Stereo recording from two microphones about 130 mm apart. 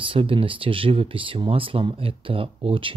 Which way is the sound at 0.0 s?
45° right (ahead or behind).